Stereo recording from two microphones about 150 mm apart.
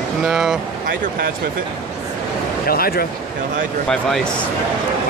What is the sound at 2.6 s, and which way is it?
Speech, 85° left.